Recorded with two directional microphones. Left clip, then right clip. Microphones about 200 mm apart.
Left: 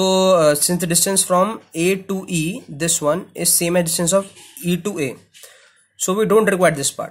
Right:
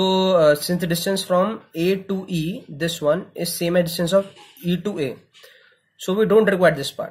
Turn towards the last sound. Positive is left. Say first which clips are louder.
# left 1 dB
turn(degrees=30)  # may be behind; listen again after turning